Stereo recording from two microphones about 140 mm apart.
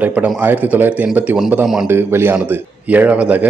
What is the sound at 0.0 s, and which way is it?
A man's voice, 10° right (ahead or behind).